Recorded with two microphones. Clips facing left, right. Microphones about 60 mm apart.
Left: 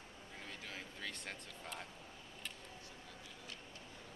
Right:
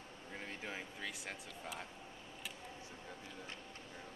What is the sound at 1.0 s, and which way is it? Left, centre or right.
Speech, centre.